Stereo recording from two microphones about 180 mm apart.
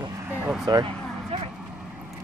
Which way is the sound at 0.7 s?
20° right (ahead or behind).